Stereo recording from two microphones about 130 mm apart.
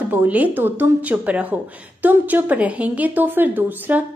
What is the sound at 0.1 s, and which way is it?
A woman's voice, 15° right (ahead or behind).